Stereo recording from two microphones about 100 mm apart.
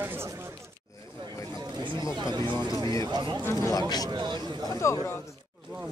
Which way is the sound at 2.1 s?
50° right (ahead or behind).